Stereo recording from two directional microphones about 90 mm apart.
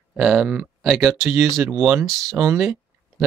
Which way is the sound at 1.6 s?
25° right (ahead or behind).